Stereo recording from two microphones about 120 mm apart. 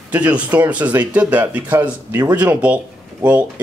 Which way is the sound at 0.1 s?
10° right (ahead or behind).